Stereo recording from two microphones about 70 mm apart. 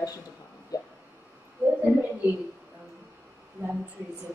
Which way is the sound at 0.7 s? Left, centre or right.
Left.